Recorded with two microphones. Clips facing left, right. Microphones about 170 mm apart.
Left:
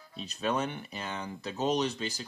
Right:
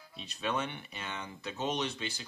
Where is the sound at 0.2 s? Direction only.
40° left (ahead or behind).